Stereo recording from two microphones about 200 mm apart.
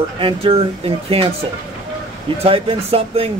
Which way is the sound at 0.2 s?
30° right (ahead or behind).